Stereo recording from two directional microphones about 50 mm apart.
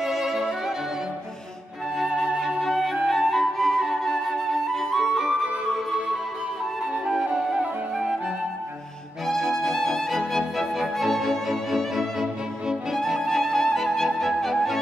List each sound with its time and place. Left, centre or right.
0.0 s music: centre
2.0 s flute: centre
2.6 s music: centre
3.8 s flute: centre
7.1 s flute: centre
9.3 s music: centre